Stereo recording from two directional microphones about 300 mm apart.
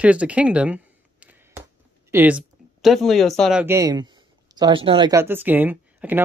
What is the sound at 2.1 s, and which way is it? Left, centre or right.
Speech, centre.